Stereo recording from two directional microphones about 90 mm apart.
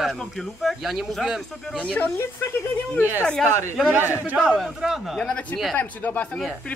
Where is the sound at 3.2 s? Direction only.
10° left (ahead or behind).